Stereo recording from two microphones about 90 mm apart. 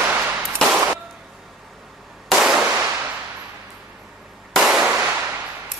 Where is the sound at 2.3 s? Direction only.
5° right (ahead or behind).